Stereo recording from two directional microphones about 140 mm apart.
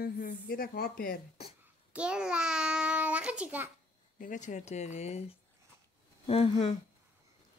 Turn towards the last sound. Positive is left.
turn(degrees=45)  # may be behind; listen again after turning